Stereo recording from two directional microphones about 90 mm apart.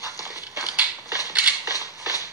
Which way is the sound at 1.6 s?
40° left (ahead or behind).